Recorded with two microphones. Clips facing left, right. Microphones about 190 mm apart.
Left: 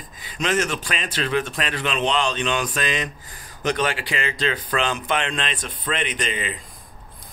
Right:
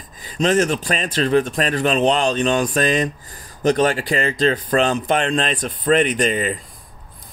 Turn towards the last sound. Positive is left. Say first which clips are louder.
# right 8 dB
turn(degrees=-40)  # may be behind; listen again after turning